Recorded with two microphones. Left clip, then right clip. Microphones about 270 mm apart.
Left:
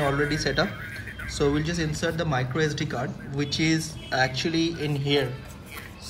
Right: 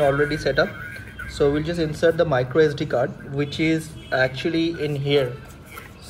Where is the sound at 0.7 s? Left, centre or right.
Left.